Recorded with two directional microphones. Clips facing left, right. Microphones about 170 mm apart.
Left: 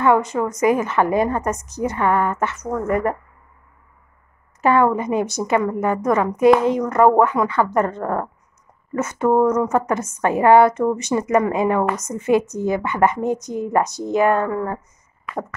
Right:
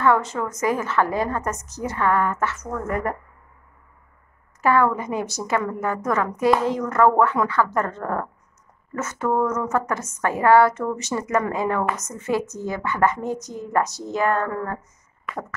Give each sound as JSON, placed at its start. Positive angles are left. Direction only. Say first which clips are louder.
{"t": 0.0, "sound": "a woman's voice", "louder": "left 3 dB", "side_deg": 15}
{"t": 4.6, "sound": "a woman's voice", "louder": "left 3 dB", "side_deg": 20}